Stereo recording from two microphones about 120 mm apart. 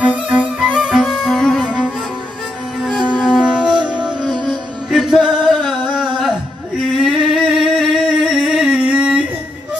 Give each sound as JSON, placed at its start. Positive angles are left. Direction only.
{"t": 0.0, "sound": "music", "side_deg": -5}
{"t": 3.3, "sound": "music", "side_deg": -5}
{"t": 6.8, "sound": "a sound", "side_deg": -5}